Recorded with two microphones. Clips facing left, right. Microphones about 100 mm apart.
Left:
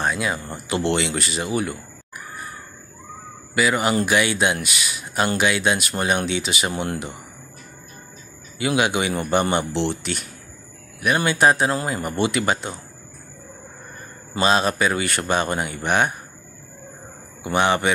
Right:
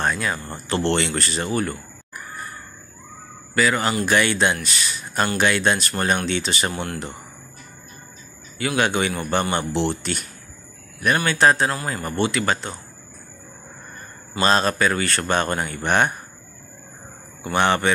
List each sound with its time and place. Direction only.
0.0 s speech: 10° left (ahead or behind)
3.5 s speech: 10° left (ahead or behind)
8.5 s speech: 15° left (ahead or behind)
9.7 s speech: 5° right (ahead or behind)
11.1 s speech: 15° left (ahead or behind)
14.4 s speech: 10° left (ahead or behind)
17.4 s speech: 10° left (ahead or behind)